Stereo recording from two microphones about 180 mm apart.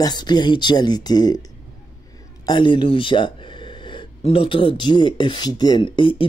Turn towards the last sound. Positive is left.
turn(degrees=30)  # may be behind; listen again after turning